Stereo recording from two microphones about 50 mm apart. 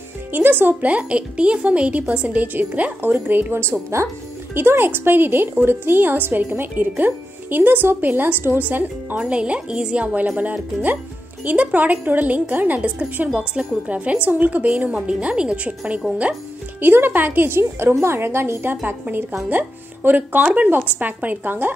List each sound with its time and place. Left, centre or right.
0.3 s a woman's voice: right
0.8 s a woman's voice: right
9.2 s a woman's voice: right
10.0 s a woman's voice: right
13.2 s a woman's voice: right
16.8 s a woman's voice: right